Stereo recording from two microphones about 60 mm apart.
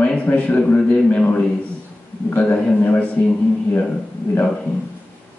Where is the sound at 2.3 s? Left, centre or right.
Left.